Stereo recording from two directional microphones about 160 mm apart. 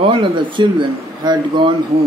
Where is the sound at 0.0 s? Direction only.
30° right (ahead or behind).